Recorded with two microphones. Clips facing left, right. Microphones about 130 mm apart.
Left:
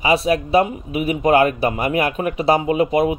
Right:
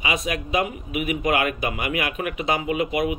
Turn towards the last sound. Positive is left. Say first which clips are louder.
# left 6 dB
turn(degrees=35)  # may be behind; listen again after turning